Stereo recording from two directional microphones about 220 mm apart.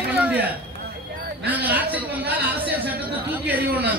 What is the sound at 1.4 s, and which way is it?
Speech, 5° right (ahead or behind).